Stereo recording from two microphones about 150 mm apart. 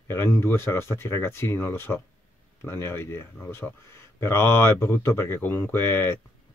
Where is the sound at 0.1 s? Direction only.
15° left (ahead or behind).